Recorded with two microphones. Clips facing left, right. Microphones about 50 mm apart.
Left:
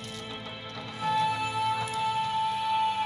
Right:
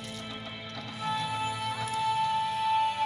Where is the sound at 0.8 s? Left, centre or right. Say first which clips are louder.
Left 5 dB; left.